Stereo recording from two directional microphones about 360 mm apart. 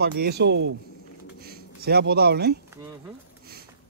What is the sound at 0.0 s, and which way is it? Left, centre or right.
Speech, right.